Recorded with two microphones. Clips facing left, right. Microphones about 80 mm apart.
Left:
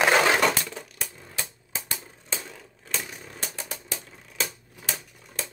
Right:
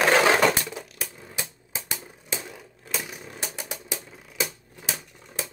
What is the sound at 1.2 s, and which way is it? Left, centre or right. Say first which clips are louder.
Typewriter: right 1 dB; centre.